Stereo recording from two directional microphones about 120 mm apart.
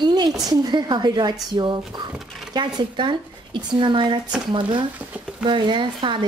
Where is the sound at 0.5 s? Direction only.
35° right (ahead or behind).